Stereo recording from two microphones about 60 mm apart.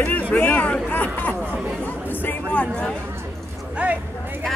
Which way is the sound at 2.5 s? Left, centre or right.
Left.